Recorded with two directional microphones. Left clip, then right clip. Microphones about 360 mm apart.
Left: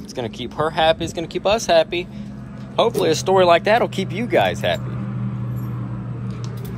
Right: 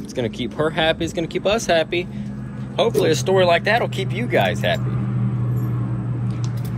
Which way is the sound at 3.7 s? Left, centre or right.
Left.